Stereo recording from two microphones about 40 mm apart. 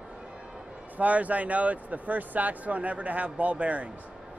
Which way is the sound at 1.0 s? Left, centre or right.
Right.